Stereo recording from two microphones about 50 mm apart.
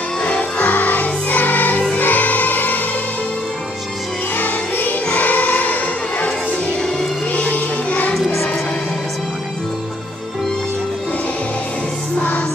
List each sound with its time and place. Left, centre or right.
0.2 s music: left
4.4 s music: left
5.1 s choir: left
7.3 s music: left
12.2 s music: left